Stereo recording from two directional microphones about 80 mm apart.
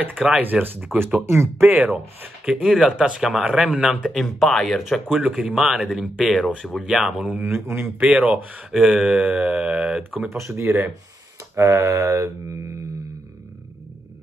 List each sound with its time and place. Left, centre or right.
0.4 s speech: right
2.4 s speech: centre
7.4 s mantra: right
8.0 s speech: centre
8.7 s speech: centre
10.3 s mantra: right